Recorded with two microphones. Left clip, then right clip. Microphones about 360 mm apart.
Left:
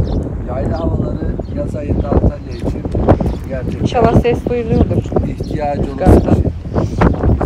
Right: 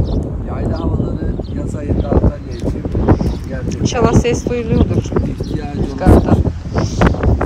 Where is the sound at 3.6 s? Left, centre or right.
Centre.